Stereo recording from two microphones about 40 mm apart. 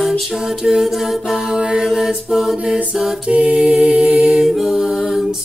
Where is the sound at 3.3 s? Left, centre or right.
Right.